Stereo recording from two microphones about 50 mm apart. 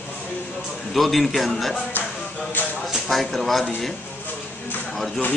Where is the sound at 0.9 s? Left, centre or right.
Centre.